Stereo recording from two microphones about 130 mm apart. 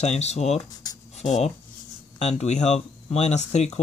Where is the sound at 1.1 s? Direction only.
60° left (ahead or behind).